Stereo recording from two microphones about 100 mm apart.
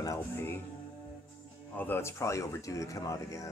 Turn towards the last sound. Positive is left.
turn(degrees=30)  # may be behind; listen again after turning